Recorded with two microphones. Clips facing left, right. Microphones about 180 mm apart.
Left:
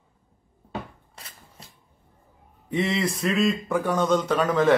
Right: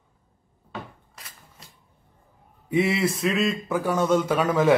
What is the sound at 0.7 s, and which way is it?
Cupboard open or close, 30° left (ahead or behind).